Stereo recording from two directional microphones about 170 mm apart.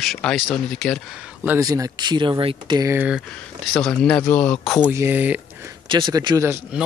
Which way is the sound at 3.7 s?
5° left (ahead or behind).